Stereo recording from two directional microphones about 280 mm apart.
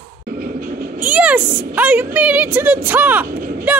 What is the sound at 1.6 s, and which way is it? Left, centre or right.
A woman's voice, centre.